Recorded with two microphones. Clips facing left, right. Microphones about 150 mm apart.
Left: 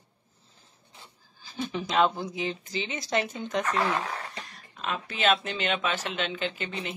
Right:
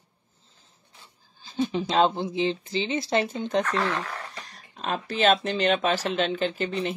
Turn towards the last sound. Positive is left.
turn(degrees=-35)  # may be behind; listen again after turning